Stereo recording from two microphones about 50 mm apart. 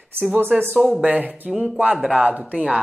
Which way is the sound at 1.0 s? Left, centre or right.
Right.